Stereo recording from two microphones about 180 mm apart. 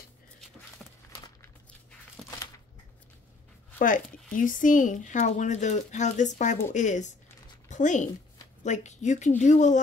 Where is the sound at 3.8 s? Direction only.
45° left (ahead or behind).